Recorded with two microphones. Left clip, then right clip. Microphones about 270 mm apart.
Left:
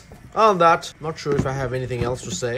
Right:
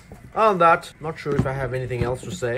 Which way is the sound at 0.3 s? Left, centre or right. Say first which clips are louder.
Left 1 dB; centre.